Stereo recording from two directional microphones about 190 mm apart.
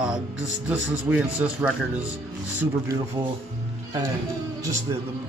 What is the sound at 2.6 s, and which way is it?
Speech, 15° right (ahead or behind).